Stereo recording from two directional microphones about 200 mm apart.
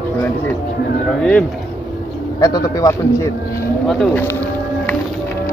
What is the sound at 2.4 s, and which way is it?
Speech, 20° left (ahead or behind).